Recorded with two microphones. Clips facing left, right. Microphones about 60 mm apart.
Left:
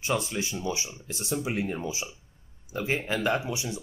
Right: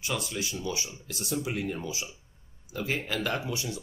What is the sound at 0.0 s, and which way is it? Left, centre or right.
Speech, left.